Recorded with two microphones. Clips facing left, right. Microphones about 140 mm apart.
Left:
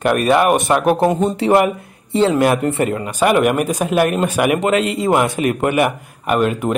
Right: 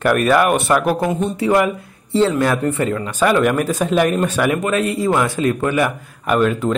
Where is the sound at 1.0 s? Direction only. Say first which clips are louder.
Left 3 dB; 35° left (ahead or behind).